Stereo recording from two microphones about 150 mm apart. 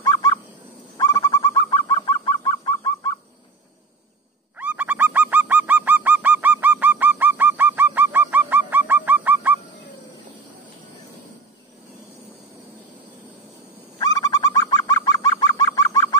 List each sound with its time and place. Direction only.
0.0 s fowl: 25° left (ahead or behind)
0.9 s bird: 25° left (ahead or behind)
4.6 s bird: 10° right (ahead or behind)
13.9 s bird: 25° left (ahead or behind)